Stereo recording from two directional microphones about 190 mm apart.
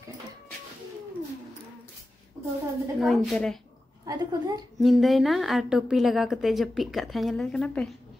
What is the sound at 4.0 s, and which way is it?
Speech, 20° right (ahead or behind).